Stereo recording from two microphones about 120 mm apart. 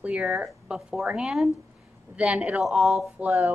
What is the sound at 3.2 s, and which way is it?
Speech, 15° right (ahead or behind).